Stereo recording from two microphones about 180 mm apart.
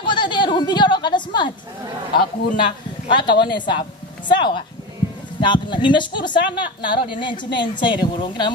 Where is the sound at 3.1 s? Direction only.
25° left (ahead or behind).